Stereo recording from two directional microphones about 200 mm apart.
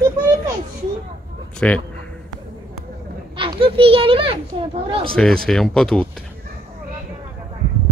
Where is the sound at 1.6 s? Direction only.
5° left (ahead or behind).